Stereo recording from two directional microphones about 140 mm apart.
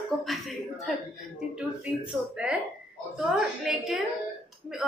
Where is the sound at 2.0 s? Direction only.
5° right (ahead or behind).